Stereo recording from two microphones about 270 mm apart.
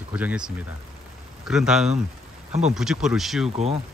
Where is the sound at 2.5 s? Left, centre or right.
Right.